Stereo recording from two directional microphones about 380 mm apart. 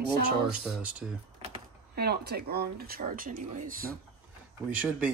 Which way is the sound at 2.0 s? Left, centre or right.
Right.